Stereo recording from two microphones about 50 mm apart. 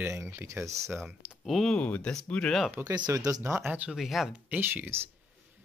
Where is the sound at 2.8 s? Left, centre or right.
Right.